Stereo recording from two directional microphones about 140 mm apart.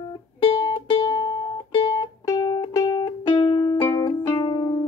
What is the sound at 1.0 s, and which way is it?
Music, 30° left (ahead or behind).